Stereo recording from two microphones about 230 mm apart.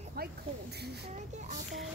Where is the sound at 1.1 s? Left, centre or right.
Right.